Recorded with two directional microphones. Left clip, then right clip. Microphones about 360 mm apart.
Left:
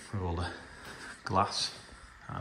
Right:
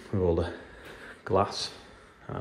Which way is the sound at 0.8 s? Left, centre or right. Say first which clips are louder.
Even; centre.